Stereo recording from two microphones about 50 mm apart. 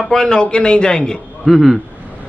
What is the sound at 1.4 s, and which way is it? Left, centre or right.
Speech, centre.